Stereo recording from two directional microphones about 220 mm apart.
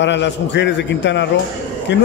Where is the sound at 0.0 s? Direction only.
55° left (ahead or behind).